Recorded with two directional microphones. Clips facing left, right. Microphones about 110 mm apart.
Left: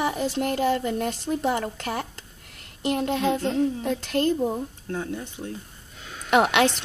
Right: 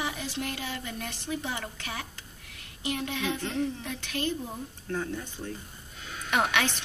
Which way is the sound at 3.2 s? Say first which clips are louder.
Left 7 dB; 40° left (ahead or behind).